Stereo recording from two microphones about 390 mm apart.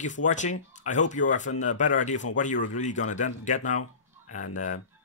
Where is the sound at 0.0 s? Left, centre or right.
Centre.